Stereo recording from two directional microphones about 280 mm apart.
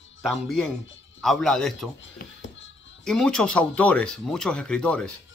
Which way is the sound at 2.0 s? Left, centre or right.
Left.